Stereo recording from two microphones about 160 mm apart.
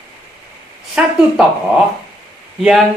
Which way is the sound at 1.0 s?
5° right (ahead or behind).